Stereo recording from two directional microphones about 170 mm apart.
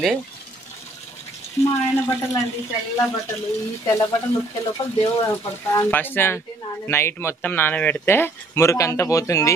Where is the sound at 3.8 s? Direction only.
15° left (ahead or behind).